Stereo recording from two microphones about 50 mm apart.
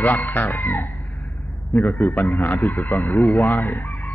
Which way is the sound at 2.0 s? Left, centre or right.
Left.